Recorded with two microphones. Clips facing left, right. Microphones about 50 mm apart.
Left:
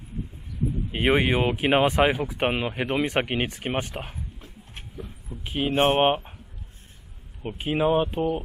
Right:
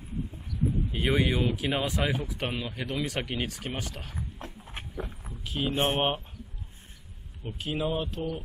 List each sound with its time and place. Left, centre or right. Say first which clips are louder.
0.9 s speech: left 6 dB; left
5.3 s speech: left 5 dB; left
7.4 s speech: left 7 dB; left